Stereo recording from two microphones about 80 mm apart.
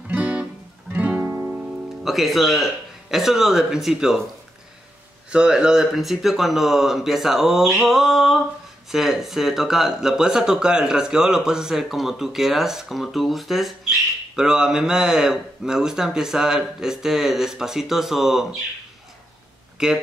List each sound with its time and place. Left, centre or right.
0.1 s music: centre
2.0 s speech: centre
5.3 s speech: centre